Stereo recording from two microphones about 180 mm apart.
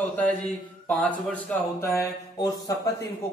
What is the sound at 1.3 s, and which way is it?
A man's voice, 10° left (ahead or behind).